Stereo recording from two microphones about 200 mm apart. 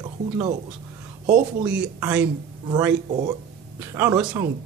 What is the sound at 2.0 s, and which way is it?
Speech, 5° right (ahead or behind).